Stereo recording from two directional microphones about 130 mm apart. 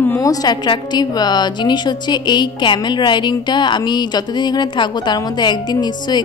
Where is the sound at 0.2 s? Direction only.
30° left (ahead or behind).